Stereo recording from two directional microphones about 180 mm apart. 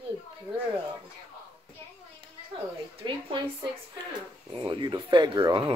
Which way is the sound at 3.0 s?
25° right (ahead or behind).